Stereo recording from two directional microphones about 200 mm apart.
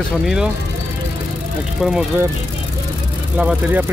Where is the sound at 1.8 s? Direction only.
Centre (ahead or behind).